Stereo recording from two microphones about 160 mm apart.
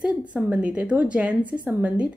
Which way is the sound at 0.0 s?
5° right (ahead or behind).